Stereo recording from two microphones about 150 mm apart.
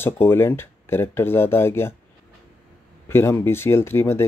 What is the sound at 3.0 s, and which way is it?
Speech, 15° left (ahead or behind).